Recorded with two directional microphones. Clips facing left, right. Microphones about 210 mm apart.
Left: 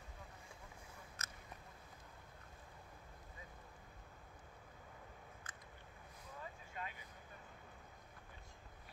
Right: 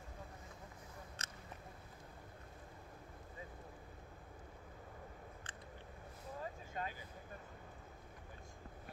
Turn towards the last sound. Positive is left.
turn(degrees=-35)  # may be behind; listen again after turning